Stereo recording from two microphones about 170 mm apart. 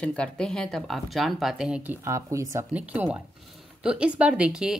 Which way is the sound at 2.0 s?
15° right (ahead or behind).